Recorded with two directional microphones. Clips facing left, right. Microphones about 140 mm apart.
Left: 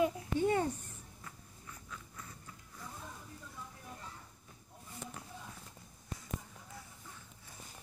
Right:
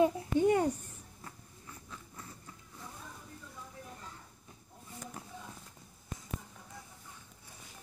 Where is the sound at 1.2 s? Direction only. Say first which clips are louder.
Right 3 dB; 35° right (ahead or behind).